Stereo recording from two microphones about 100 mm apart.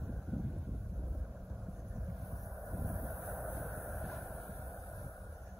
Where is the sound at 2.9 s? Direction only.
30° right (ahead or behind).